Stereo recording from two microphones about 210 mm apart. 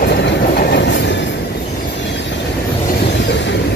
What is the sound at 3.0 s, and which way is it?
Vehicle, 55° left (ahead or behind).